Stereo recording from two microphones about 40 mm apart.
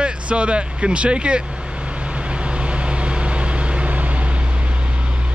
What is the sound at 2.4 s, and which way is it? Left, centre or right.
Vehicle, right.